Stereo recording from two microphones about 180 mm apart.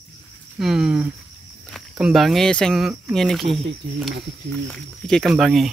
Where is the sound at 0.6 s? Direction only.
Centre (ahead or behind).